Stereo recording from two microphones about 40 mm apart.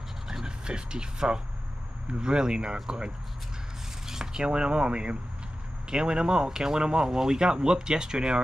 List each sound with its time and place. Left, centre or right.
0.3 s speech: centre
4.1 s speech: centre